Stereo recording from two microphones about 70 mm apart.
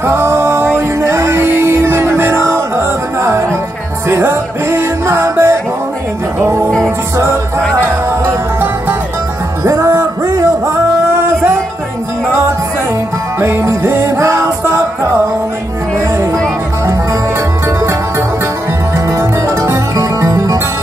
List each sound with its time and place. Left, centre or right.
0.0 s music: right
7.7 s music: right
9.7 s music: right
11.1 s music: right
13.4 s music: right
19.0 s music: right